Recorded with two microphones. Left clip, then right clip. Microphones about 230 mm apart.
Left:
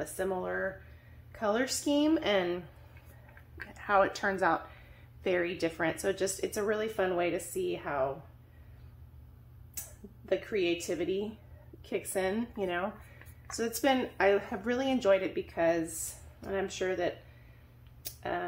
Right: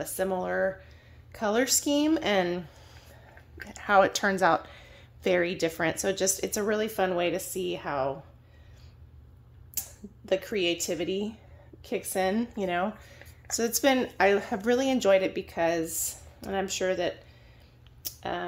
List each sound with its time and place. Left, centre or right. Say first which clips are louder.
0.0 s a woman's voice: right 4 dB; right
3.7 s a woman's voice: right 5 dB; right
10.2 s a woman's voice: right 3 dB; right
18.0 s a sound: right 2 dB; right